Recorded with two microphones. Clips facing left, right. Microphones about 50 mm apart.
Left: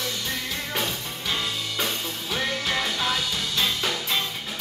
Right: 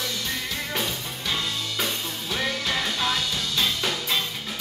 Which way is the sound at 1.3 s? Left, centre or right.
Centre.